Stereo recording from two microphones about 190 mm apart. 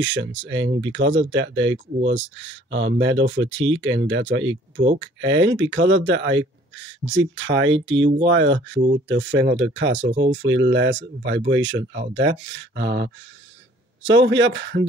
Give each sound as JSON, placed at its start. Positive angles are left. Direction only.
{"t": 0.0, "sound": "speech", "side_deg": -75}
{"t": 14.0, "sound": "speech", "side_deg": -80}